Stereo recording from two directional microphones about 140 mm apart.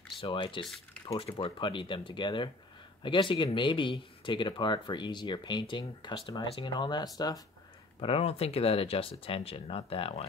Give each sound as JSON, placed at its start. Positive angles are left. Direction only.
{"t": 0.2, "sound": "speech", "side_deg": 35}
{"t": 8.0, "sound": "speech", "side_deg": 45}